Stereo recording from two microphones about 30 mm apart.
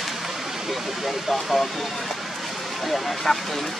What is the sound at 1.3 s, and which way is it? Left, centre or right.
Speech, centre.